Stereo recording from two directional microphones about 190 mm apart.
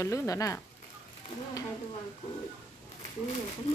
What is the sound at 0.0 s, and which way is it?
Speech, 15° left (ahead or behind).